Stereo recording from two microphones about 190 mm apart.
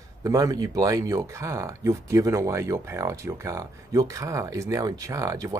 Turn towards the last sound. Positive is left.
turn(degrees=-15)  # may be behind; listen again after turning